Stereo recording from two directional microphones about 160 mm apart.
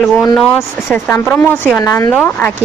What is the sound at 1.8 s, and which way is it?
Speech, 25° left (ahead or behind).